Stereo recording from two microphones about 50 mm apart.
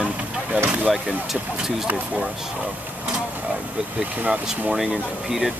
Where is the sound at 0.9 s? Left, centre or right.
Centre.